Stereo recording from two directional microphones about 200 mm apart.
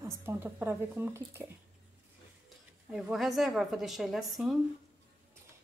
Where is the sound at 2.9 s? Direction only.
Centre (ahead or behind).